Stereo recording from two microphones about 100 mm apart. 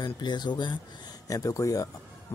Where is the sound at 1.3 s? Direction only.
35° left (ahead or behind).